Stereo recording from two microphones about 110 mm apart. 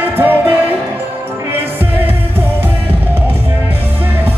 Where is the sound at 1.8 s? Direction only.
20° right (ahead or behind).